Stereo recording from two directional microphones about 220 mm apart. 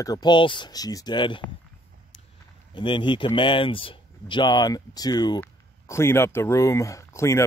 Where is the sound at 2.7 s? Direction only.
20° left (ahead or behind).